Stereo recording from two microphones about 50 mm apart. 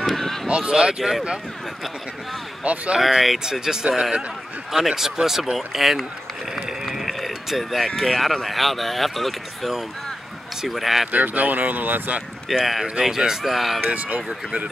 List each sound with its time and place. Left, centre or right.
0.0 s a sound: centre
0.5 s speech: right
2.6 s speech: right
3.0 s speech: centre
6.5 s run: centre
8.5 s speech: centre
11.1 s speech: right
12.4 s speech: centre
13.8 s speech: right